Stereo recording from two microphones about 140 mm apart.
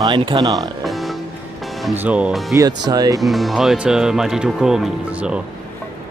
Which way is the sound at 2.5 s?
25° right (ahead or behind).